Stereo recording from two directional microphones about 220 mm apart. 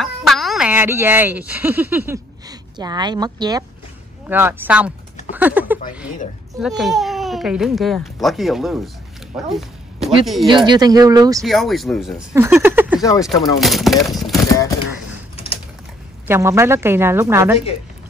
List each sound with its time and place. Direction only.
0.0 s a woman's voice: centre (ahead or behind)
10.5 s a woman's voice: 20° right (ahead or behind)
11.4 s speech: centre (ahead or behind)
13.0 s speech: 15° left (ahead or behind)
13.4 s speech: centre (ahead or behind)
15.3 s typing: 25° left (ahead or behind)
16.3 s a woman's voice: 15° right (ahead or behind)